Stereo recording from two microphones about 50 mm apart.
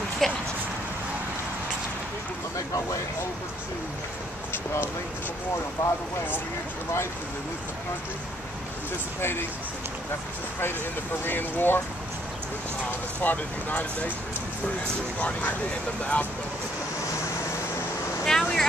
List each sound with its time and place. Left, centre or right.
0.2 s speech: centre
2.5 s a sound: left
5.8 s speech: left
11.2 s speech: left
13.2 s speech: left
15.1 s speech: left
18.2 s vehicle: centre